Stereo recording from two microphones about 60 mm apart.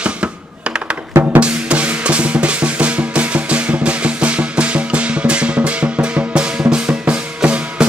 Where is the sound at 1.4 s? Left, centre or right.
Centre.